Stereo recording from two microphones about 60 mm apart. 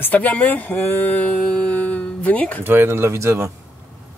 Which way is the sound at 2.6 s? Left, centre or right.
Right.